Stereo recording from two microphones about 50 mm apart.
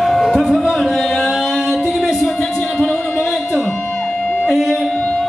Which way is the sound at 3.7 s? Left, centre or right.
Left.